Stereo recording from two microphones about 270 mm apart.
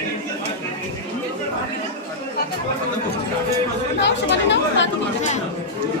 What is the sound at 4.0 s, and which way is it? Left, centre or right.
Speech, left.